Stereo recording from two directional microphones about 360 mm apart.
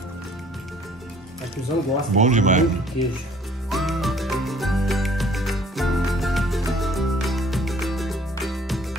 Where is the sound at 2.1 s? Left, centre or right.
Centre.